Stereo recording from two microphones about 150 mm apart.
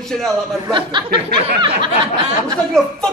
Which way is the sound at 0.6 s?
30° right (ahead or behind).